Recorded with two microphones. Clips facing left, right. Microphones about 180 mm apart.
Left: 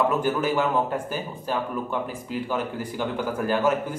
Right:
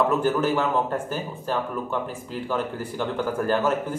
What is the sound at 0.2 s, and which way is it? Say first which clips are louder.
A man's voice: right 1 dB; 10° left (ahead or behind).